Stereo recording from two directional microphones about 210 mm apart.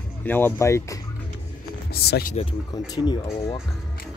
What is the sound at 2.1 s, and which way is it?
Speech, 40° left (ahead or behind).